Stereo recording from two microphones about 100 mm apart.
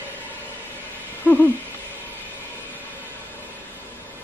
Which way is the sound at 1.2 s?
20° left (ahead or behind).